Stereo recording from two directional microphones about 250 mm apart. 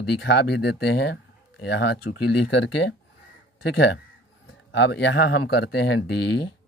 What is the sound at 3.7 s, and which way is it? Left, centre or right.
Speech, left.